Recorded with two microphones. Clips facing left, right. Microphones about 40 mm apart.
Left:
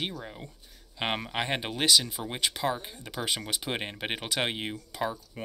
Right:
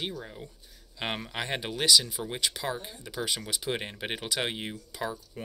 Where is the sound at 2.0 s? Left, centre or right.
Centre.